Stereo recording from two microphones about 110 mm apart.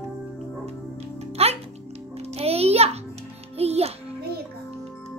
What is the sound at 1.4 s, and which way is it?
Music, 65° right (ahead or behind).